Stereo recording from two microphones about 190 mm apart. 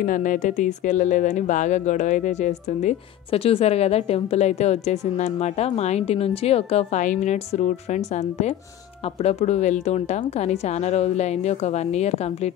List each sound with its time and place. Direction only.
0.0 s speech: 45° left (ahead or behind)